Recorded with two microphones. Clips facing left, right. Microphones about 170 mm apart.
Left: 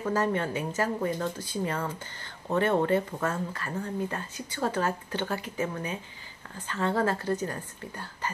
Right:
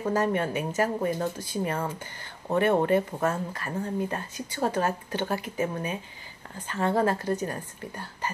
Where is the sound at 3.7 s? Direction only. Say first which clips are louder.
Right 3 dB; 25° right (ahead or behind).